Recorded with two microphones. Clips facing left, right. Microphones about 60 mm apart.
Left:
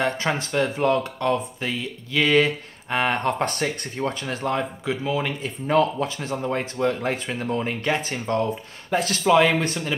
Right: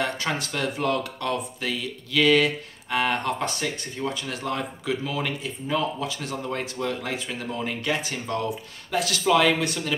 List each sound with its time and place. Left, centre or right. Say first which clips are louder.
0.0 s speech: left 3 dB; left
5.9 s speech: left 4 dB; left
9.2 s speech: left 2 dB; left